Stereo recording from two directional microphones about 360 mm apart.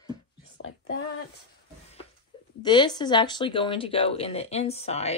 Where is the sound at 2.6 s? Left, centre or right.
Centre.